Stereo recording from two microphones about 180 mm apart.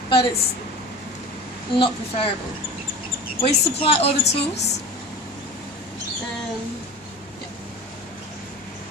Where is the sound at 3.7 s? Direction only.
30° left (ahead or behind).